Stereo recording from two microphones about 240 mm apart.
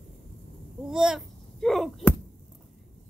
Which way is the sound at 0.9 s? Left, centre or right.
Centre.